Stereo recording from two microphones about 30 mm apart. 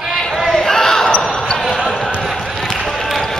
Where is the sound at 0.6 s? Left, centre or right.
Centre.